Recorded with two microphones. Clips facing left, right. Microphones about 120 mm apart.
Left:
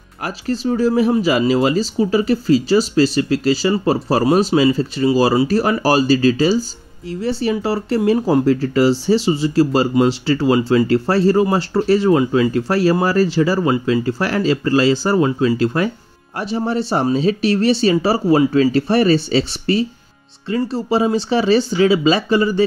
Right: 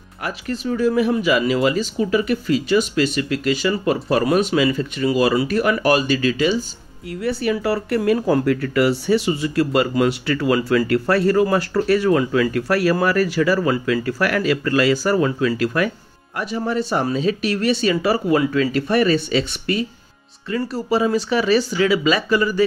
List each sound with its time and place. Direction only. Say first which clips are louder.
0.2 s speech: left 4 dB; 35° left (ahead or behind)